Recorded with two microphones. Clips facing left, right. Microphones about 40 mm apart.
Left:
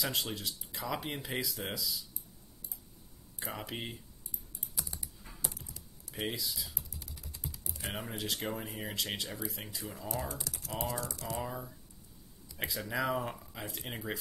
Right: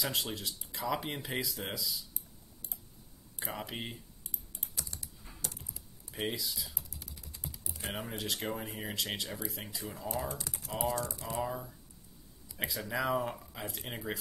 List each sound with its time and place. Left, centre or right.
0.0 s speech: centre
3.5 s speech: centre
4.7 s typing: centre
6.1 s typing: centre
7.9 s speech: centre
10.0 s speech: right
10.4 s typing: right
11.1 s speech: centre
11.3 s speech: centre